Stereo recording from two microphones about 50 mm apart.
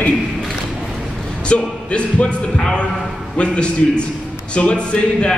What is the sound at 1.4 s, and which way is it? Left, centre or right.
A man's voice, left.